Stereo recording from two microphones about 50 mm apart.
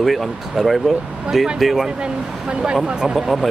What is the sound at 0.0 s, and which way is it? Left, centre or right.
Speech, centre.